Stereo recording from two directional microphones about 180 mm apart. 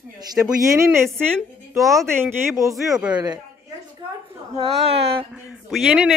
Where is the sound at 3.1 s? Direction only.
20° right (ahead or behind).